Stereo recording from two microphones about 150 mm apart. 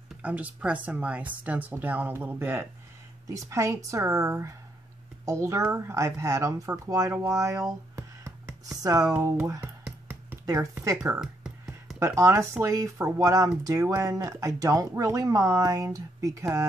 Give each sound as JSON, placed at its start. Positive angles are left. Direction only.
{"t": 0.2, "sound": "speech", "side_deg": -10}
{"t": 7.9, "sound": "a sound", "side_deg": -20}
{"t": 9.6, "sound": "a sound", "side_deg": -10}
{"t": 10.4, "sound": "speech", "side_deg": -20}
{"t": 11.0, "sound": "music", "side_deg": -5}
{"t": 12.0, "sound": "speech", "side_deg": -20}